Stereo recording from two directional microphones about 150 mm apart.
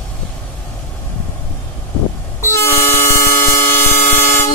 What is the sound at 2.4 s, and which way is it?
Vehicle horn, 15° left (ahead or behind).